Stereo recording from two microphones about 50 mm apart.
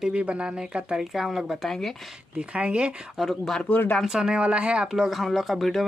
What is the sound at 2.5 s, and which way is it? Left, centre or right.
Speech, right.